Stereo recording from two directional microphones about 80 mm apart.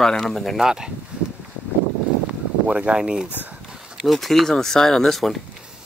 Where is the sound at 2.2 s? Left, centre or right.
Centre.